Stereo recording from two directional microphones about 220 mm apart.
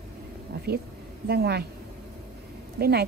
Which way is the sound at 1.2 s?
45° right (ahead or behind).